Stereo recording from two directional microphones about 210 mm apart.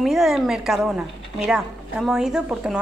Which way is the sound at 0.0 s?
Centre (ahead or behind).